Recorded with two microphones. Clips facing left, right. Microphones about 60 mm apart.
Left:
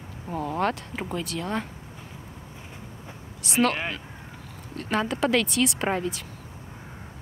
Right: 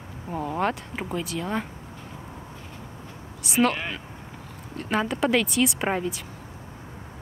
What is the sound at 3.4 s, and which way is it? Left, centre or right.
Speech, centre.